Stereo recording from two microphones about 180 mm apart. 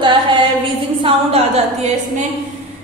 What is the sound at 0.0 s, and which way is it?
A capella, 25° right (ahead or behind).